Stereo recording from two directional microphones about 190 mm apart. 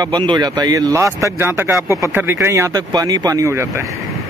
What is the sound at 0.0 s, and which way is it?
Speech, 20° right (ahead or behind).